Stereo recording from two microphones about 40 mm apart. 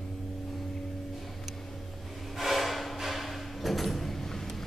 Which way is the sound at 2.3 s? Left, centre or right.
Centre.